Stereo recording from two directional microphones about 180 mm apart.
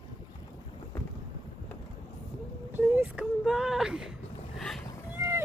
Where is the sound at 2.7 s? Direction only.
10° right (ahead or behind).